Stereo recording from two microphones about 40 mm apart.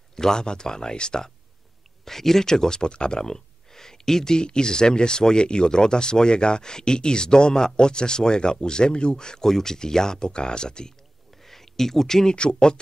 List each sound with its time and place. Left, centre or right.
0.1 s speech: centre
2.0 s speech: centre
11.4 s speech: centre